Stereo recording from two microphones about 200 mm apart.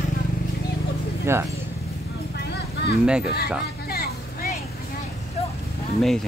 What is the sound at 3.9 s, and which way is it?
Vehicle, 50° left (ahead or behind).